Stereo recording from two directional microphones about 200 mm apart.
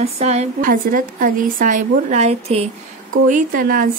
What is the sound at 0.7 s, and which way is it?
A woman's voice, 45° right (ahead or behind).